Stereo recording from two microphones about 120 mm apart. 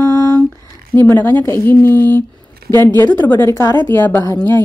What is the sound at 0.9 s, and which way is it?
Speech, 15° left (ahead or behind).